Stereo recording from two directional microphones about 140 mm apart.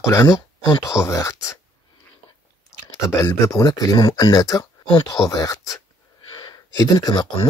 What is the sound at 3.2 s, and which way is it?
Speech, 20° left (ahead or behind).